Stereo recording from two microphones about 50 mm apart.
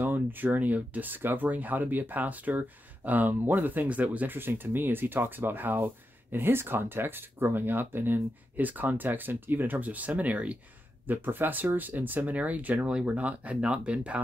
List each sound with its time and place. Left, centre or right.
0.0 s speech: right
4.4 s speech: right
11.1 s speech: right